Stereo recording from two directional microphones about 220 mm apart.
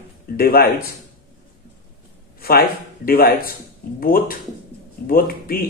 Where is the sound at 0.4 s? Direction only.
45° left (ahead or behind).